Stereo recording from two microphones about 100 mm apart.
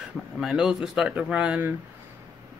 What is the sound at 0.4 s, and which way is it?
Speech, 5° right (ahead or behind).